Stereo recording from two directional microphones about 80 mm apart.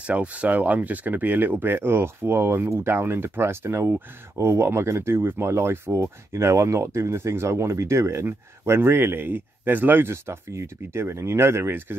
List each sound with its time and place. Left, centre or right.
0.0 s speech: centre